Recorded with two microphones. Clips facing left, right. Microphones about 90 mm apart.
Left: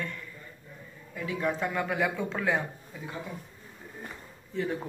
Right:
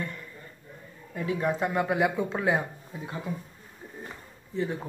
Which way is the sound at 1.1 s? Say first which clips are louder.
Right 3 dB; 35° right (ahead or behind).